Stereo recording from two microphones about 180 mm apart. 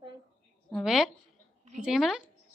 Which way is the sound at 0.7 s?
Centre (ahead or behind).